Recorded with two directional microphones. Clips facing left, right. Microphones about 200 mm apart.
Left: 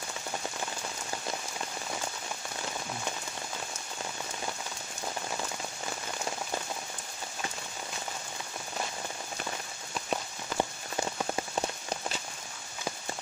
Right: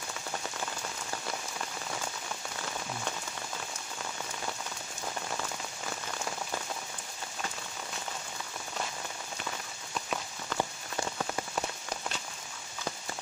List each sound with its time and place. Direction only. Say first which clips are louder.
10.5 s rain on surface: left 2 dB; 15° left (ahead or behind)